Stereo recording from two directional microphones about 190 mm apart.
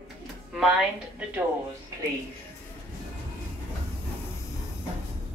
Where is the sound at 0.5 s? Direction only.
Centre (ahead or behind).